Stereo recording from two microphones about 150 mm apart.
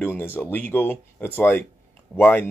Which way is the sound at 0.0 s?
15° left (ahead or behind).